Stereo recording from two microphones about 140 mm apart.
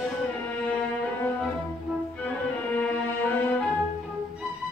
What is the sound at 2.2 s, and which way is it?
Music, 10° left (ahead or behind).